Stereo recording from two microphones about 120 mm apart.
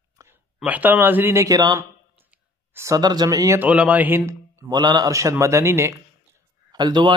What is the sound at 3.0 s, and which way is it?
Speech, 35° right (ahead or behind).